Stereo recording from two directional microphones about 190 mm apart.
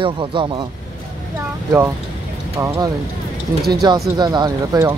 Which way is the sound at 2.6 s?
15° right (ahead or behind).